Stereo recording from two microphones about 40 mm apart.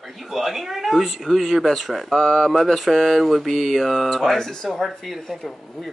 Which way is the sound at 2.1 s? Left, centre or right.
Centre.